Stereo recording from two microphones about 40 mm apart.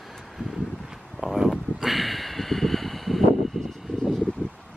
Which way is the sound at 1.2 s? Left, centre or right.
Centre.